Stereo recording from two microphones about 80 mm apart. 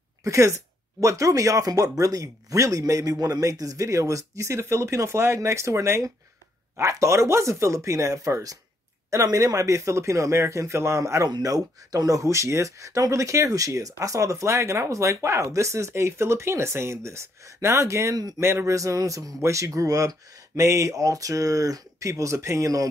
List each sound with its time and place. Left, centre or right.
0.2 s speech: right
11.2 s speech: right